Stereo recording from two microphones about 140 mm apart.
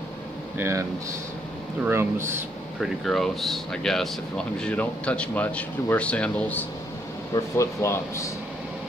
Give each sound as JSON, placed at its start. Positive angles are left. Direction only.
{"t": 0.6, "sound": "speech", "side_deg": -20}
{"t": 1.9, "sound": "speech", "side_deg": -20}
{"t": 2.8, "sound": "speech", "side_deg": 0}
{"t": 7.3, "sound": "speech", "side_deg": 20}